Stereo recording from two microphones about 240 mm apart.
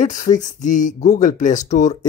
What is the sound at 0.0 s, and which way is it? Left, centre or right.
Speech, left.